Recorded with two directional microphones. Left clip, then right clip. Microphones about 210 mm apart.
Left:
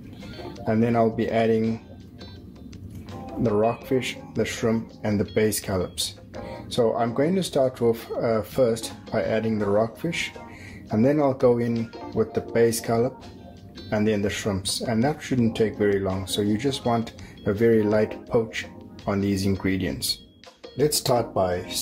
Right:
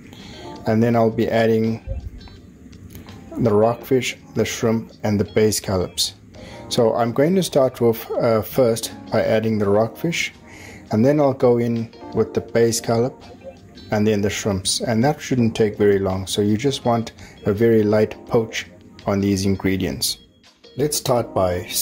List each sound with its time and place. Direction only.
0.7 s speech: 30° right (ahead or behind)
3.4 s speech: 30° right (ahead or behind)
11.7 s speech: centre (ahead or behind)
12.2 s speech: 25° right (ahead or behind)
20.7 s speech: 15° right (ahead or behind)
21.3 s speech: 30° right (ahead or behind)